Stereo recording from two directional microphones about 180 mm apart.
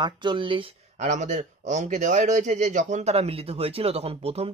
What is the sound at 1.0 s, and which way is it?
A man's voice, 40° right (ahead or behind).